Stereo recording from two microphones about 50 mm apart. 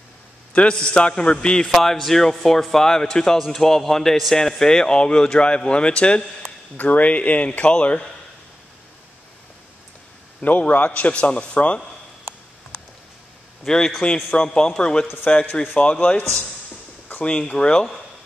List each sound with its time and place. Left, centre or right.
0.5 s speech: left
1.7 s speech: centre; by 8.0 s left
10.4 s speech: left
13.7 s speech: centre